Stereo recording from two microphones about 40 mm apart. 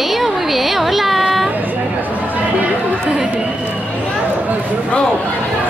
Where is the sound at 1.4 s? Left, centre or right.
Right.